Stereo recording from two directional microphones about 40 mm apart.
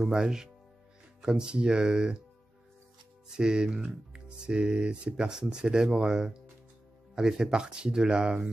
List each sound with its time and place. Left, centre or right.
0.0 s speech: centre
3.3 s speech: right